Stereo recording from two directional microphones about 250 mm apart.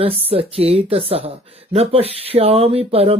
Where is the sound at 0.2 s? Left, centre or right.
Right.